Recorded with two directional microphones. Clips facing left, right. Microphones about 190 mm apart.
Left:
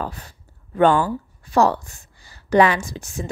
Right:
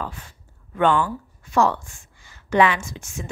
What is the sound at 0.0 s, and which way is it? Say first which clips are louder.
Speech: left 3 dB; 40° left (ahead or behind).